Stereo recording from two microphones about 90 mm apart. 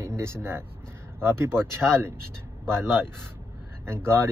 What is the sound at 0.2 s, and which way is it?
Speech, 30° right (ahead or behind).